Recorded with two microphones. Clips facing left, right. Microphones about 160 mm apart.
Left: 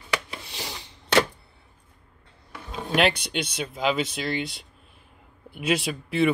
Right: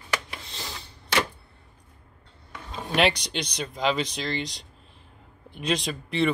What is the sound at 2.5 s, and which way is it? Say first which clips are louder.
Speech: left 3 dB; centre (ahead or behind).